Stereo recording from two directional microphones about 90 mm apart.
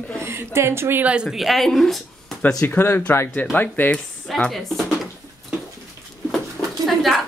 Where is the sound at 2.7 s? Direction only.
25° left (ahead or behind).